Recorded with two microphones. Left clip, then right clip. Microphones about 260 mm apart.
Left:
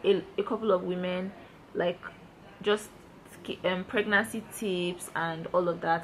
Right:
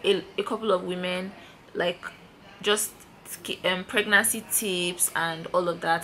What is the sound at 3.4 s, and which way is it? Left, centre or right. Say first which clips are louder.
A woman's voice: right 4 dB; centre.